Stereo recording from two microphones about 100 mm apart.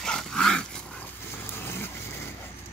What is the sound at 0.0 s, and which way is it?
Dog, 5° left (ahead or behind).